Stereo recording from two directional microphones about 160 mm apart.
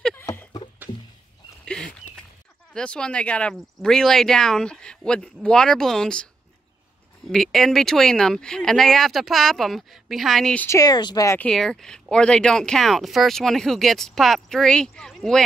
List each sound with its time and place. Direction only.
0.0 s a sound: 15° left (ahead or behind)
2.7 s speech: 5° left (ahead or behind)
7.2 s speech: 5° left (ahead or behind)
10.8 s speech: 25° left (ahead or behind)
11.3 s speech: 5° left (ahead or behind)